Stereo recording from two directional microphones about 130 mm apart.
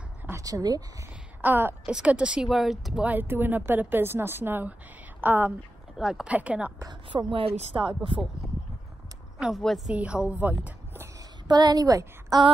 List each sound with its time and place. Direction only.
0.3 s a woman's voice: 25° right (ahead or behind)
1.4 s speech: 15° right (ahead or behind)
5.9 s speech: 5° right (ahead or behind)
6.8 s speech: 35° right (ahead or behind)
9.4 s a woman's voice: centre (ahead or behind); by 11.2 s 15° right (ahead or behind)
11.4 s a woman's voice: 30° right (ahead or behind)